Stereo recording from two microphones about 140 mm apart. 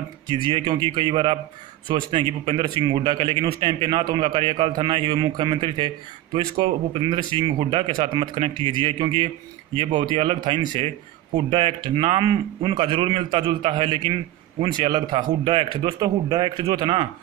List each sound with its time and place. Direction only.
0.5 s a man's voice: 35° right (ahead or behind)